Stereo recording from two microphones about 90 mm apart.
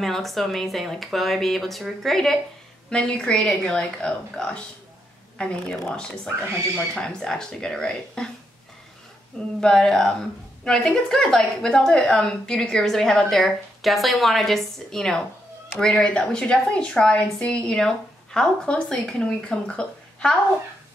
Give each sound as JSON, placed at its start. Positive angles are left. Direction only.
{"t": 0.0, "sound": "a woman's voice", "side_deg": 0}
{"t": 9.6, "sound": "a woman's voice", "side_deg": 5}